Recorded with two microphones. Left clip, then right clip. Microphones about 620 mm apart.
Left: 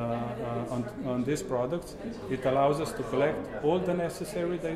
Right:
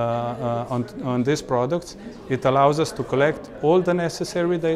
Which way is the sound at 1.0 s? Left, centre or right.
Right.